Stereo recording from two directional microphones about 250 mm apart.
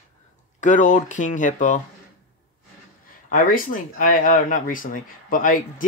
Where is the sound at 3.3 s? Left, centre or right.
Left.